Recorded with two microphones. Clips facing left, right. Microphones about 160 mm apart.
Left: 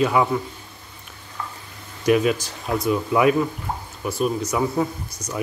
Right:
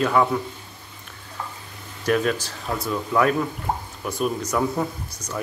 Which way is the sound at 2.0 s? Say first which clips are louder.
Left 3 dB; 10° left (ahead or behind).